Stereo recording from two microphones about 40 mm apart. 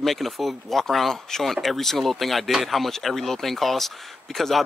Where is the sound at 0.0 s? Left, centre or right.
Centre.